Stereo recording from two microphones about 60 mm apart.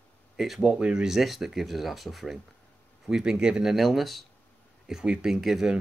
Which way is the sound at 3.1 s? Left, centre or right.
Centre.